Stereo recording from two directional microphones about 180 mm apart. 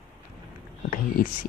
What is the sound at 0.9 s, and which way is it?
Speech, 50° left (ahead or behind).